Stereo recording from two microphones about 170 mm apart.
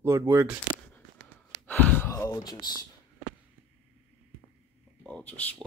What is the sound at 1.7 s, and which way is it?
Speech, 10° left (ahead or behind).